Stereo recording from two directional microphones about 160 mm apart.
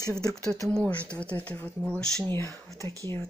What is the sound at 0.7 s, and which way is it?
Speech, 10° left (ahead or behind).